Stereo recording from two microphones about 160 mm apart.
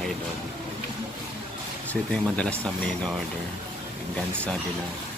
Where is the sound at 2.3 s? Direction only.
5° left (ahead or behind).